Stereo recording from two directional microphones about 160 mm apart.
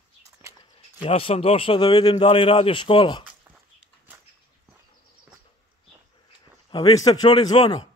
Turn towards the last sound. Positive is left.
turn(degrees=25)  # may be behind; listen again after turning